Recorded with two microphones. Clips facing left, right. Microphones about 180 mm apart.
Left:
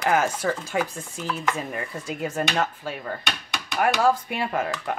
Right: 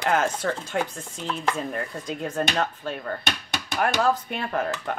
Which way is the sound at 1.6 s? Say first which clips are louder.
Right 1 dB; 5° left (ahead or behind).